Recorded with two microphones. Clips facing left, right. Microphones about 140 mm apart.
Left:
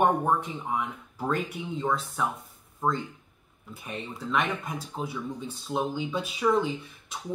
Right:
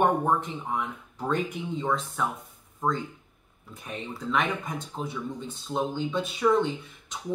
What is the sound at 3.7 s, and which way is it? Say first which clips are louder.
Speech: even; centre (ahead or behind).